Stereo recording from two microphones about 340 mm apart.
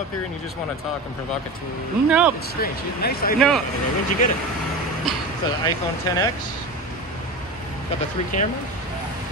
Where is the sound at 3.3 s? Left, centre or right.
Centre.